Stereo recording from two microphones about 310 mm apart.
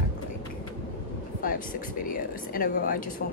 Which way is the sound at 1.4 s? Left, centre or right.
Left.